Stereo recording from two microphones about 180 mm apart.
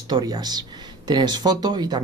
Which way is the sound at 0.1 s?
20° right (ahead or behind).